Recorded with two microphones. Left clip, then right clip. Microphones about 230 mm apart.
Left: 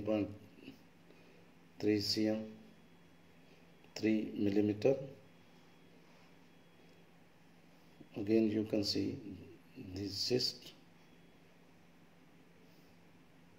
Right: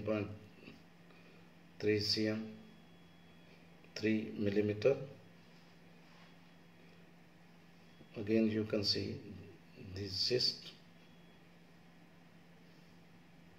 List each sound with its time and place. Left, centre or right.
0.0 s a sound: left
1.8 s speech: left
3.9 s speech: left
8.1 s speech: left